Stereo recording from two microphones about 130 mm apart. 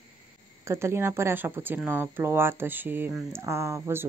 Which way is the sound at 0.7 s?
20° right (ahead or behind).